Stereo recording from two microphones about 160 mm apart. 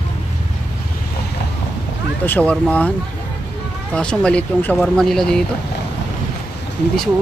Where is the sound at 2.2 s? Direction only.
10° left (ahead or behind).